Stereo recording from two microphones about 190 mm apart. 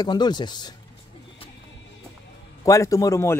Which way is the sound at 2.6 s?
15° left (ahead or behind).